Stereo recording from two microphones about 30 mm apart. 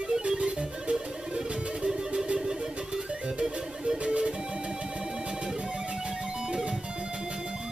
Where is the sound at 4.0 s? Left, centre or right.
Right.